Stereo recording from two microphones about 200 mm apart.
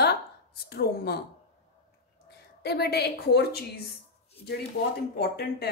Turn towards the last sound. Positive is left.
turn(degrees=55)  # may be behind; listen again after turning